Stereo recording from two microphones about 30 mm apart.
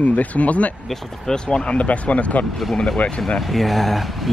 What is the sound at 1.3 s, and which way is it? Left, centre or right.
Speech, left.